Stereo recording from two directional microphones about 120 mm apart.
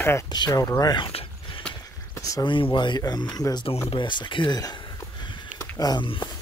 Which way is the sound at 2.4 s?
45° left (ahead or behind).